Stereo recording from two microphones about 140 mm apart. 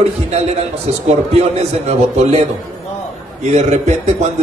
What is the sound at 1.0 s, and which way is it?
A man's voice, 50° right (ahead or behind).